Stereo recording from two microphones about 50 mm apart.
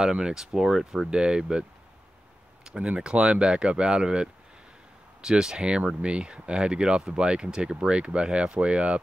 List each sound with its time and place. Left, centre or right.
0.0 s speech: centre